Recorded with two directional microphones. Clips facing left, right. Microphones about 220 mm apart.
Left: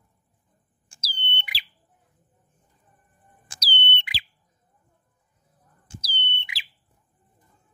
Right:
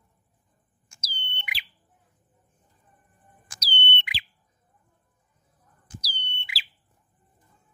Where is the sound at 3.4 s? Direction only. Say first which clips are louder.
Left 1 dB; 35° left (ahead or behind).